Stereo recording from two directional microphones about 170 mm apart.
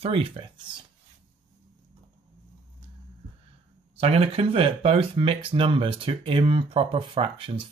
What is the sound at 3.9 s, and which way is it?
Speech, 35° right (ahead or behind).